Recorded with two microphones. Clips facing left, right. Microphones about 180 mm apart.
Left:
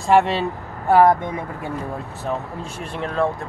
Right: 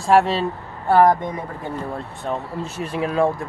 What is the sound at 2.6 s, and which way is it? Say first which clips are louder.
Speech: right 4 dB; 5° right (ahead or behind).